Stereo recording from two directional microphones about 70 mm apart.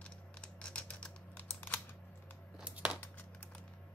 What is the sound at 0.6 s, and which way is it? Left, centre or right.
Typing, centre.